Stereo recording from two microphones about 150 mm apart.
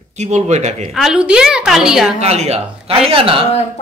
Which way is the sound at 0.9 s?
Centre (ahead or behind).